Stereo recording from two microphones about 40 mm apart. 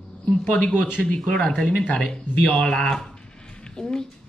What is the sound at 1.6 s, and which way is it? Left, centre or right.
Speech, left.